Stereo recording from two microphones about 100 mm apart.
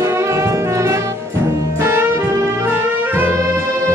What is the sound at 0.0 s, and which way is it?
Brass instrument, 30° right (ahead or behind).